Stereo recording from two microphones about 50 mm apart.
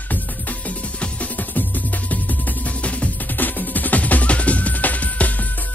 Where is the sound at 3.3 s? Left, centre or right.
Left.